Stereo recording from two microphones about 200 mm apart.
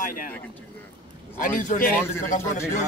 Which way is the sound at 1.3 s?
40° left (ahead or behind).